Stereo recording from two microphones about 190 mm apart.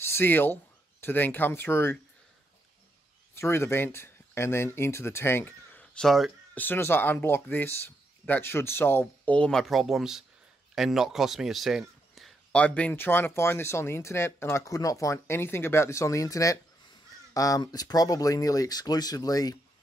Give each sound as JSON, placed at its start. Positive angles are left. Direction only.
{"t": 0.0, "sound": "speech", "side_deg": 10}
{"t": 3.3, "sound": "speech", "side_deg": 15}